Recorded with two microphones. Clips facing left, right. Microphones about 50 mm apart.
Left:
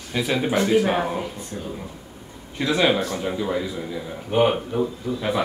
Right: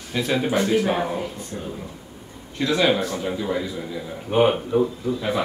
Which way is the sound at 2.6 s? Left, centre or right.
Centre.